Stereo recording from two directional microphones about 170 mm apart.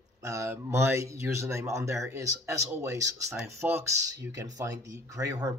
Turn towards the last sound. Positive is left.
turn(degrees=-20)  # may be behind; listen again after turning